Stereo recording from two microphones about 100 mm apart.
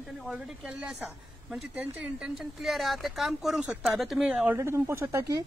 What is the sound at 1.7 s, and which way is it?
Speech, 15° right (ahead or behind).